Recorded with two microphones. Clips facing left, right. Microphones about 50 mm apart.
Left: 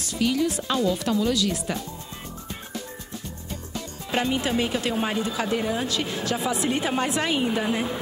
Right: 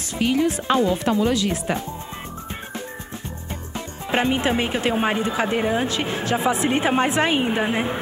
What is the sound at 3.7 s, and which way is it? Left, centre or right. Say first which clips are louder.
Speech: right 4 dB; right.